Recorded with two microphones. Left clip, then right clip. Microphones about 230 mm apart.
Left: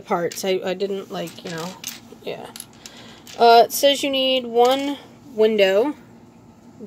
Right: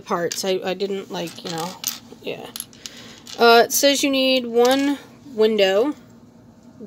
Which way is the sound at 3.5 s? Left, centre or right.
Centre.